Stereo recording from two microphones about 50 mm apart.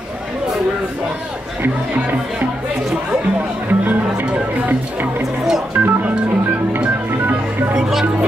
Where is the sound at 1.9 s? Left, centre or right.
Right.